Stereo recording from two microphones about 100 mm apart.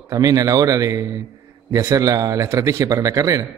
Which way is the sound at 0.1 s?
35° right (ahead or behind).